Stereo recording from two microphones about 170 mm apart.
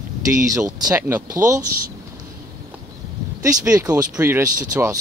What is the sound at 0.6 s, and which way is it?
Speech, 15° right (ahead or behind).